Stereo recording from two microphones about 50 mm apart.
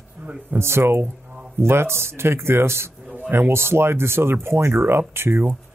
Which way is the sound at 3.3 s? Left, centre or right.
Right.